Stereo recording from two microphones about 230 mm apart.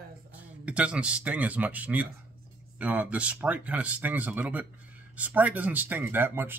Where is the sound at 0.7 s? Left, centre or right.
Centre.